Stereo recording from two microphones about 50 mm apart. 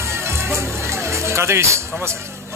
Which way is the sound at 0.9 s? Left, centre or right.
Right.